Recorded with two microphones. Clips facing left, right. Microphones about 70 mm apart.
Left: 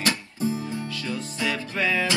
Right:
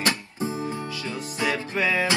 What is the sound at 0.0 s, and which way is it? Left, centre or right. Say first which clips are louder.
Music: left 1 dB; right.